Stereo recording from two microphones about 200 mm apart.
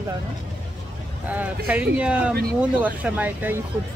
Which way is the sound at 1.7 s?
5° right (ahead or behind).